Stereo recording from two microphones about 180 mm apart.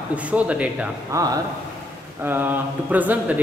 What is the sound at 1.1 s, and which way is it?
A man's voice, 20° right (ahead or behind).